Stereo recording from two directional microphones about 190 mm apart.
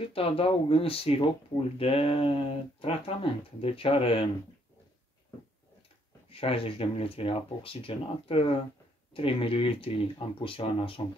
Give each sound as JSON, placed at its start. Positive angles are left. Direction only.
{"t": 0.0, "sound": "speech", "side_deg": 30}
{"t": 6.2, "sound": "speech", "side_deg": 30}